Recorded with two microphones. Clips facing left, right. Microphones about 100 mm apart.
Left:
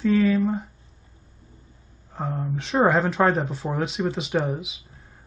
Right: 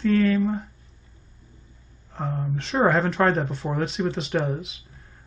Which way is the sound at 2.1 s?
5° left (ahead or behind).